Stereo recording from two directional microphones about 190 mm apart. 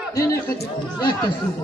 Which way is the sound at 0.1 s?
15° left (ahead or behind).